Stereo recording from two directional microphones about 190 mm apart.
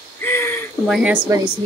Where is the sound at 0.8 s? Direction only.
5° right (ahead or behind).